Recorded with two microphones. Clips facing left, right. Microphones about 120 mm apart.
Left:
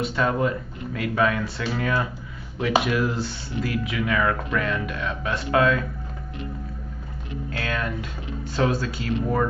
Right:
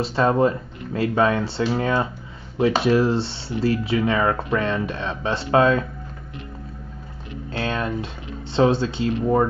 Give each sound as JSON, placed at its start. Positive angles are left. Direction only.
{"t": 0.0, "sound": "speech", "side_deg": -30}
{"t": 7.5, "sound": "speech", "side_deg": -25}